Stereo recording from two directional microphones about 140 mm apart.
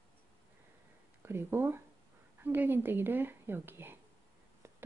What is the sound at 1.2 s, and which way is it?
A woman's voice, 15° right (ahead or behind).